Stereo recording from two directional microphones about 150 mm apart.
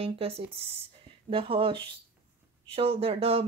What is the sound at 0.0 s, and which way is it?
Speech, 40° right (ahead or behind).